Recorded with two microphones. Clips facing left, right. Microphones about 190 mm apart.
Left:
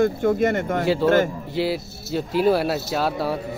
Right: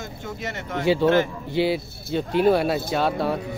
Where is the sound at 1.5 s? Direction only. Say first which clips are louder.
Right 3 dB; centre (ahead or behind).